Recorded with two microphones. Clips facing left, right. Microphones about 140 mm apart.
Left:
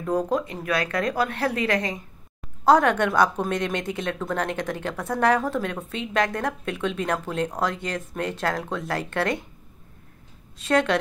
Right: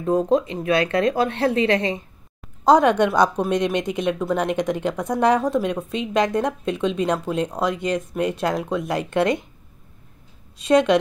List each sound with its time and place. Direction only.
0.0 s a woman's voice: 20° right (ahead or behind)
10.6 s a woman's voice: 15° right (ahead or behind)